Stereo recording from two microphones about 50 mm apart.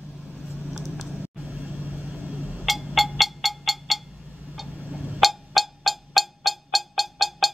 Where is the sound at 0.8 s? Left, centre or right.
Centre.